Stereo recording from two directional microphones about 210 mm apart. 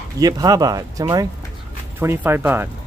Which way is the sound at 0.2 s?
15° right (ahead or behind).